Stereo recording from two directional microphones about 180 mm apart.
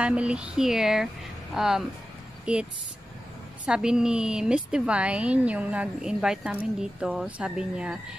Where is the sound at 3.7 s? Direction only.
5° right (ahead or behind).